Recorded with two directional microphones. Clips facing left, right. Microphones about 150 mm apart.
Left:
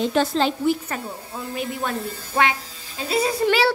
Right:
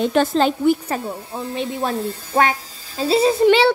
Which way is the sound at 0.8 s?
30° right (ahead or behind).